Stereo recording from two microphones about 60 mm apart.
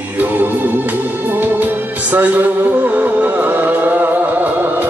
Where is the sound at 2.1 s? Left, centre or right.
Right.